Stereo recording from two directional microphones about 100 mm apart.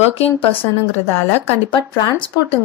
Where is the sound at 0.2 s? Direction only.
90° left.